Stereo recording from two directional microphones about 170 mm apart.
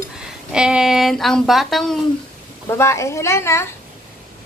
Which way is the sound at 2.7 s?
15° left (ahead or behind).